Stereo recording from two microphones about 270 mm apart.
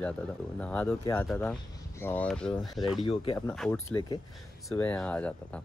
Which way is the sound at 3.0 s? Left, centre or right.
Left.